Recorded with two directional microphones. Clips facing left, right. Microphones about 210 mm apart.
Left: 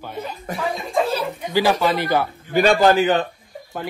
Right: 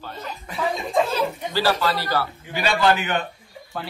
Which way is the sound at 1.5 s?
15° left (ahead or behind).